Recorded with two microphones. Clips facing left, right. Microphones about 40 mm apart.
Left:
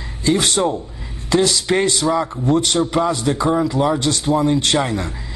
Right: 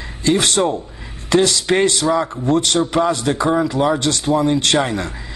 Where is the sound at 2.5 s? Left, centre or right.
Right.